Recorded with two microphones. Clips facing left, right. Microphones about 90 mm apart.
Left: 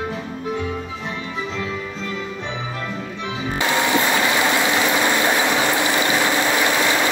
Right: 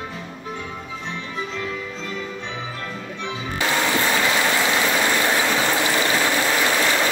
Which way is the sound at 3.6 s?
20° left (ahead or behind).